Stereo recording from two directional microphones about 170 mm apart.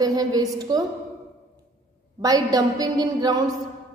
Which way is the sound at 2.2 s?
20° right (ahead or behind).